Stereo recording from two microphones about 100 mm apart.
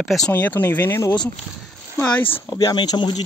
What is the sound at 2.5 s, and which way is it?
Speech, 40° left (ahead or behind).